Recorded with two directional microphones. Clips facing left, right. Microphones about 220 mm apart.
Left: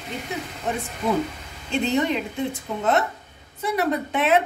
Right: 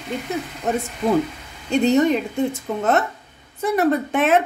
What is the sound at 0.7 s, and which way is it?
A woman's voice, 45° right (ahead or behind).